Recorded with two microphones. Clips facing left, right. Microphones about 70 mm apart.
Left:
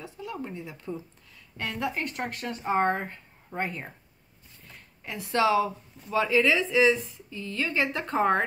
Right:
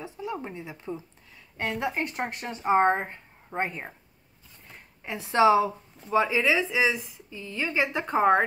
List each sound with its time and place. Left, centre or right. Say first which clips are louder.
0.0 s a woman's voice: right 2 dB; right